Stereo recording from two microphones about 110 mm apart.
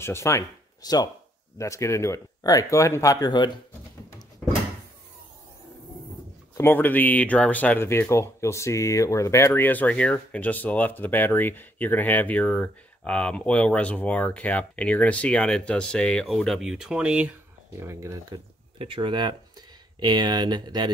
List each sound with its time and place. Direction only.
0.0 s speech: 25° left (ahead or behind); by 3.5 s 40° left (ahead or behind)
6.5 s speech: 20° left (ahead or behind); by 17.4 s 10° right (ahead or behind)
17.7 s speech: 30° right (ahead or behind)
18.8 s speech: 50° right (ahead or behind)